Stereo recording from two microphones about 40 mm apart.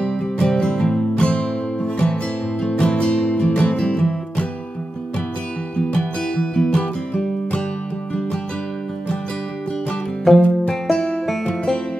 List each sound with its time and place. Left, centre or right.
0.1 s music: centre
5.8 s music: left
10.3 s music: centre
10.7 s music: centre